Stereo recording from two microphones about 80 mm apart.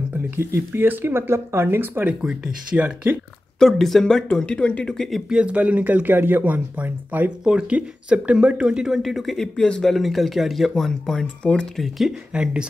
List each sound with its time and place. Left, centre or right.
0.4 s speech: right
2.2 s speech: centre
3.5 s speech: centre
5.3 s speech: centre
12.3 s speech: centre